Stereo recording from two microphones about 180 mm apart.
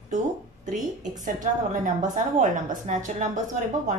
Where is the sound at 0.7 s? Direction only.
45° right (ahead or behind).